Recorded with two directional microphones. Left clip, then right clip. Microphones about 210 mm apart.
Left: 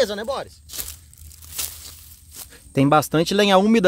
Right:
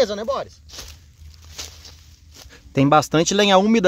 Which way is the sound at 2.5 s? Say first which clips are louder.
Right 1 dB; 5° left (ahead or behind).